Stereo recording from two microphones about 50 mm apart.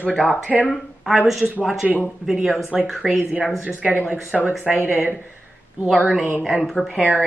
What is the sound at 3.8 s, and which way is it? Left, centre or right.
Speech, right.